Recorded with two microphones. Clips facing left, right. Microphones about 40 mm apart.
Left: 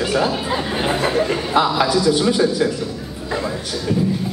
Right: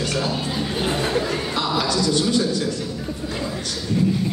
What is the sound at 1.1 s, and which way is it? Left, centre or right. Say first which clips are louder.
A man's voice: left 6 dB; centre.